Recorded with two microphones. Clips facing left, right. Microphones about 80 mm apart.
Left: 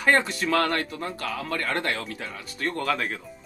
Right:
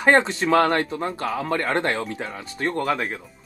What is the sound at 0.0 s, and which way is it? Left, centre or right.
Speech, right.